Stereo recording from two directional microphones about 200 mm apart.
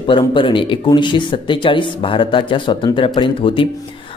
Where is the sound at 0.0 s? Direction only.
25° left (ahead or behind).